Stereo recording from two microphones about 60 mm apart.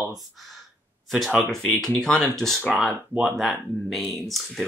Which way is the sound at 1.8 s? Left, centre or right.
Centre.